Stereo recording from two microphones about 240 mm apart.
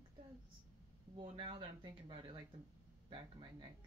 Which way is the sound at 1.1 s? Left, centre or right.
Right.